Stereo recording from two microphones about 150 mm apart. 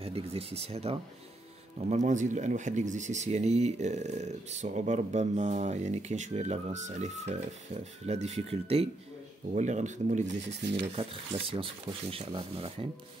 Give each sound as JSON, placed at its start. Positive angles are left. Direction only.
{"t": 0.0, "sound": "speech", "side_deg": -40}
{"t": 9.5, "sound": "speech", "side_deg": -50}
{"t": 10.7, "sound": "speech", "side_deg": -40}